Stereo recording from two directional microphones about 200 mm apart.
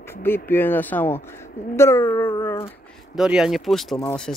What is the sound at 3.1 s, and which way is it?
Speech, 5° right (ahead or behind).